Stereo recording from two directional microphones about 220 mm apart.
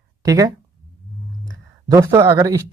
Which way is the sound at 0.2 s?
15° right (ahead or behind).